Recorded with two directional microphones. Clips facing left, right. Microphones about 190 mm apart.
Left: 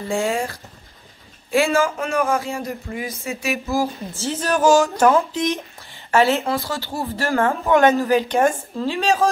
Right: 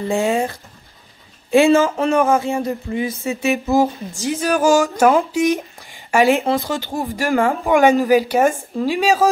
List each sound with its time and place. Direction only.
0.1 s speech: 20° right (ahead or behind)